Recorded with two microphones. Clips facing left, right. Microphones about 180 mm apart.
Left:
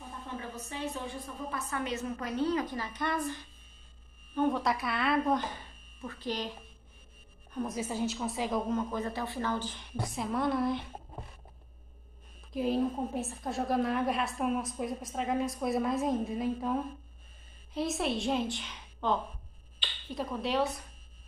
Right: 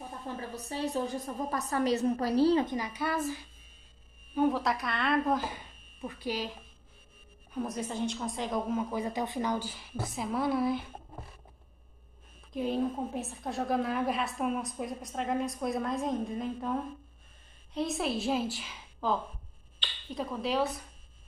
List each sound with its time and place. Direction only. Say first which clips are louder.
0.6 s a woman's voice: right 8 dB; 35° right (ahead or behind)
2.8 s a woman's voice: right 1 dB; 10° right (ahead or behind)
7.5 s a woman's voice: even; centre (ahead or behind)
12.5 s a woman's voice: left 1 dB; centre (ahead or behind)